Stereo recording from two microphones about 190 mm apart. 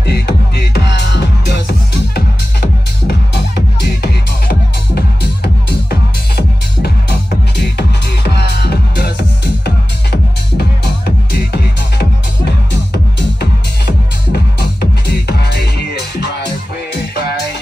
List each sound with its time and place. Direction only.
0.0 s music: 60° left (ahead or behind)
4.0 s music: 60° left (ahead or behind)
11.3 s music: 60° left (ahead or behind)
14.3 s music: 60° left (ahead or behind)